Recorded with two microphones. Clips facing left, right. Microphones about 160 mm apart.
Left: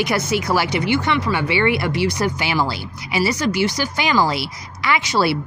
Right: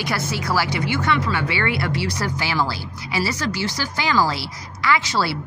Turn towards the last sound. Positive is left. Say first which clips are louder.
# left 2 dB
turn(degrees=15)  # may be behind; listen again after turning